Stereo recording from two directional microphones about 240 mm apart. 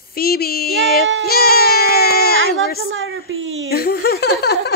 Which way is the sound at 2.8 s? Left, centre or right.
Right.